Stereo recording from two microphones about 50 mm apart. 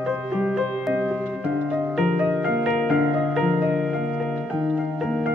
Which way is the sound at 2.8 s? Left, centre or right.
Centre.